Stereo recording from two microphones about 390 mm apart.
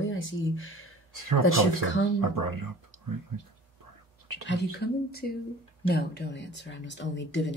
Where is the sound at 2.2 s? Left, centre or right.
Right.